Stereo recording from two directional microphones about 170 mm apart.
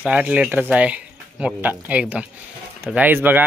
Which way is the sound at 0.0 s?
10° right (ahead or behind).